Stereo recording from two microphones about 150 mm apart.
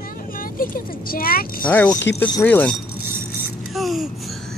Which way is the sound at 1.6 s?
10° left (ahead or behind).